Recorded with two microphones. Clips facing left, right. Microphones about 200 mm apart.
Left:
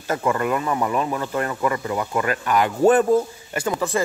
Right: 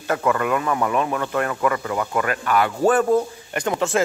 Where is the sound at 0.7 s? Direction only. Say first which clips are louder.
Right 1 dB; 15° left (ahead or behind).